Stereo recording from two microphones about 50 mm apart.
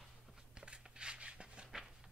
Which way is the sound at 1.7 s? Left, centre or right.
Centre.